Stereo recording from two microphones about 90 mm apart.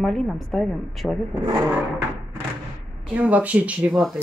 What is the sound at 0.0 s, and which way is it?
Speech, 5° left (ahead or behind).